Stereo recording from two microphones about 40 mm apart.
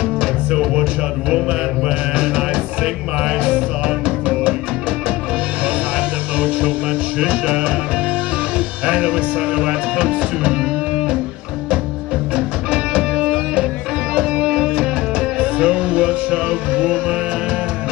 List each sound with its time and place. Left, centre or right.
0.0 s music: right
5.9 s music: right
12.4 s music: right